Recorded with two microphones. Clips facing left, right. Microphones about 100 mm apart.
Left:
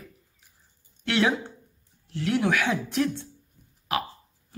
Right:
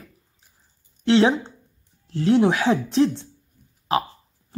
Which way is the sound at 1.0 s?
25° right (ahead or behind).